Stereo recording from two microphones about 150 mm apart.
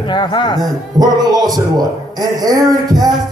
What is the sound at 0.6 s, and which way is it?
Speech, 25° right (ahead or behind).